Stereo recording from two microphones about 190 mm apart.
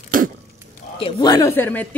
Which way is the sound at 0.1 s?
45° right (ahead or behind).